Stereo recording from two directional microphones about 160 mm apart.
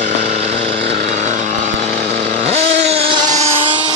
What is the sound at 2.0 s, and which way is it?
Chainsaw, 70° right (ahead or behind).